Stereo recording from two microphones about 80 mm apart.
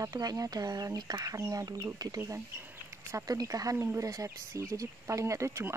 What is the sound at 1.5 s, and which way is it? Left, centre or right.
Speech, right.